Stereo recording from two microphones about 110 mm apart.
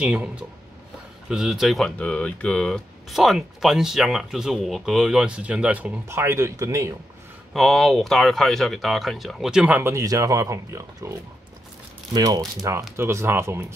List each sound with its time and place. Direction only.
0.0 s speech: 10° right (ahead or behind)
2.0 s speech: 10° left (ahead or behind); by 5.9 s 10° right (ahead or behind)
6.0 s speech: 25° right (ahead or behind)
7.5 s speech: centre (ahead or behind); by 9.9 s 15° right (ahead or behind)
9.9 s speech: 30° right (ahead or behind)
12.9 s speech: 20° right (ahead or behind)